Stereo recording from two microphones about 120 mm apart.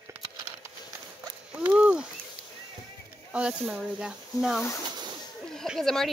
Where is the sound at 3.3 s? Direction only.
10° right (ahead or behind).